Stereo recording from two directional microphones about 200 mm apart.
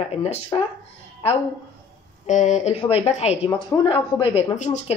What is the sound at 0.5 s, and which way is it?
Speech, 15° left (ahead or behind).